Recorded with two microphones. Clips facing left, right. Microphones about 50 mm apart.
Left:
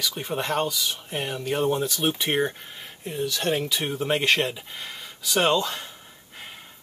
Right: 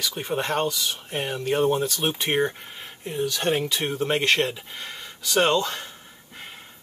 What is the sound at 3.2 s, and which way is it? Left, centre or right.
Speech, centre.